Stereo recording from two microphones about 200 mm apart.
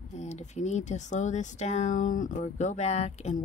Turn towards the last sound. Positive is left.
turn(degrees=35)  # may be behind; listen again after turning